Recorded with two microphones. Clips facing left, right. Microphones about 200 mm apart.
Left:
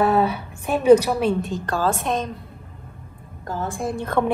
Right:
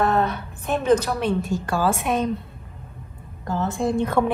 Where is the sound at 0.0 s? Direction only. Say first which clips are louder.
Left 2 dB; 10° left (ahead or behind).